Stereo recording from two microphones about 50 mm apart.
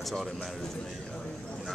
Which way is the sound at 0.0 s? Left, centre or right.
Centre.